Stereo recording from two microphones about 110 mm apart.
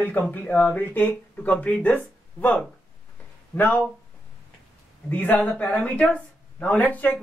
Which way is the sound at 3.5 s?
15° left (ahead or behind).